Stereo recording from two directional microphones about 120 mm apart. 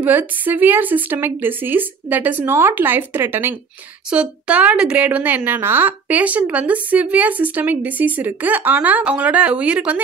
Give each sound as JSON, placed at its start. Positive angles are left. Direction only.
{"t": 0.0, "sound": "a woman's voice", "side_deg": -15}